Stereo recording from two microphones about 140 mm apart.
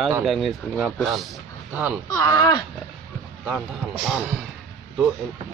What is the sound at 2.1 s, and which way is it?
Speech, 25° left (ahead or behind).